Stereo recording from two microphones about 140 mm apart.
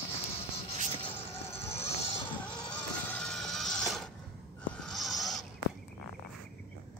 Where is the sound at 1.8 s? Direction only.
50° left (ahead or behind).